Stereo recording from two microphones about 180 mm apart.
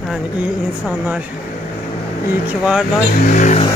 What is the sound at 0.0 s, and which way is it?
Speech, 5° right (ahead or behind).